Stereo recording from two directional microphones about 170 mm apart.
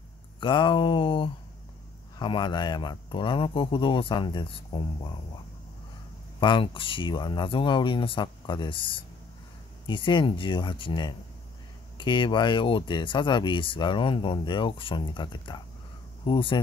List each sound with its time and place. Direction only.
0.4 s speech: 30° left (ahead or behind)
6.4 s speech: 30° left (ahead or behind)